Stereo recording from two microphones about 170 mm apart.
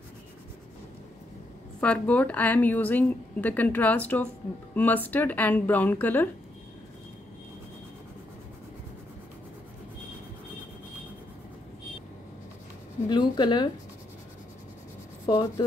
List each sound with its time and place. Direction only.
1.8 s a woman's voice: 10° left (ahead or behind)
13.1 s speech: 25° left (ahead or behind)
15.2 s speech: 25° left (ahead or behind)